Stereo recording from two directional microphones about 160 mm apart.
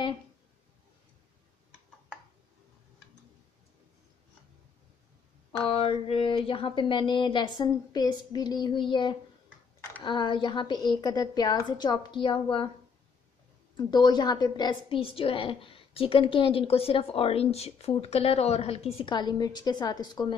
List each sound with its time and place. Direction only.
5.7 s speech: 35° left (ahead or behind)
13.7 s a woman's voice: 25° left (ahead or behind)